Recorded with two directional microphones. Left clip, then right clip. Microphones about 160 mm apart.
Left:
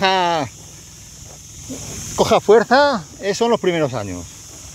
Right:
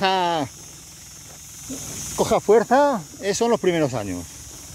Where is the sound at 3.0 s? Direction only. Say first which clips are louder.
Left 3 dB; 15° right (ahead or behind).